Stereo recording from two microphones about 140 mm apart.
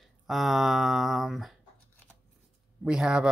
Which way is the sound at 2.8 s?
5° right (ahead or behind).